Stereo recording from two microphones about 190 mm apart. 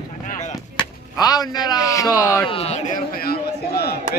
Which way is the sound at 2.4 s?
30° left (ahead or behind).